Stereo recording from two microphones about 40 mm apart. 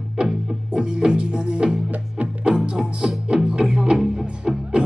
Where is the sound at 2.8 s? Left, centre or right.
Centre.